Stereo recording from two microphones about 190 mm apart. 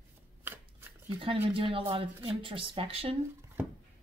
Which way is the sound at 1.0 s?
25° right (ahead or behind).